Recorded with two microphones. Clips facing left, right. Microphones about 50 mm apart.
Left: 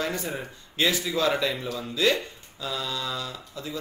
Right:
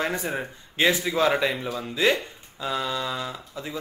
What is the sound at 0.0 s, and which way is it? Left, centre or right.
Speech, right.